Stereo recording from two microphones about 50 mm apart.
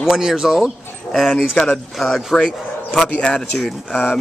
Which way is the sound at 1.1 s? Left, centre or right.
Centre.